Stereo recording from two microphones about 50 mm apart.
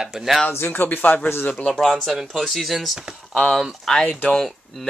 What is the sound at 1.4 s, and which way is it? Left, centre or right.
Speech, left.